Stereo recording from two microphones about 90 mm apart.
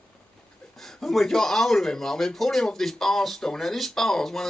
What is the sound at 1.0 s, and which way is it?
A man's voice, 5° left (ahead or behind).